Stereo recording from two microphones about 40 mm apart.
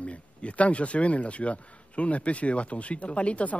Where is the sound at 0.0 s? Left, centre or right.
Left.